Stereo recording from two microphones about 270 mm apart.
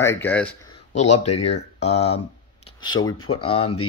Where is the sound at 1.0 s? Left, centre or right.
Left.